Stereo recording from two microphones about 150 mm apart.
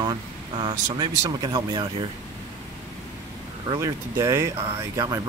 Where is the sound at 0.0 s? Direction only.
30° right (ahead or behind).